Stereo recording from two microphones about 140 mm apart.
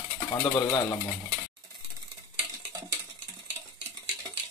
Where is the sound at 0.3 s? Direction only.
25° left (ahead or behind).